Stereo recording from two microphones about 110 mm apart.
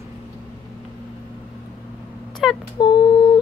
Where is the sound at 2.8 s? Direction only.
45° left (ahead or behind).